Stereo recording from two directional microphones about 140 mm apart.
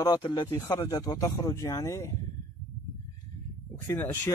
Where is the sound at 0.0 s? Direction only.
30° left (ahead or behind).